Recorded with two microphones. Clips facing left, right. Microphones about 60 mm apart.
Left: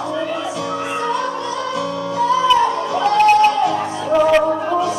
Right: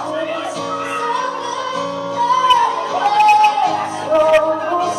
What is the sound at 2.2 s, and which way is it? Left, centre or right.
Music, right.